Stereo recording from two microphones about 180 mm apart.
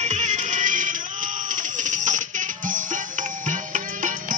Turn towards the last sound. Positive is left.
turn(degrees=-45)  # may be behind; listen again after turning